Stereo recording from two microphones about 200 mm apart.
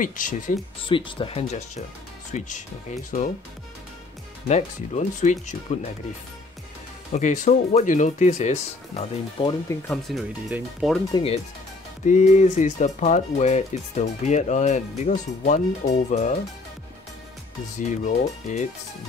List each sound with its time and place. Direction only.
0.0 s speech: 40° left (ahead or behind)
0.8 s speech: 25° left (ahead or behind)
4.5 s speech: 35° left (ahead or behind)
7.1 s speech: 35° left (ahead or behind)
9.8 s speech: centre (ahead or behind)
11.1 s speech: 30° left (ahead or behind)
17.7 s speech: 40° left (ahead or behind)